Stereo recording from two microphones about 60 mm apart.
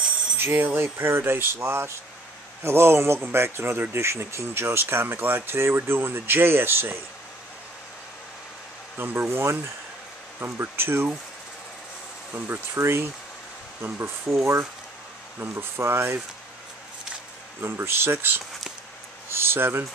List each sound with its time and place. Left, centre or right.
0.4 s speech: right
8.9 s speech: right
12.4 s speech: right
14.3 s speech: right
17.6 s speech: right